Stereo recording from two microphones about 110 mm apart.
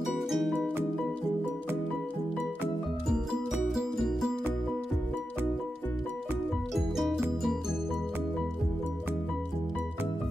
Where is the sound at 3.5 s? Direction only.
5° right (ahead or behind).